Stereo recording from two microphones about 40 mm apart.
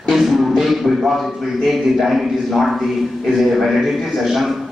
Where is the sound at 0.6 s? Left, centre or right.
Centre.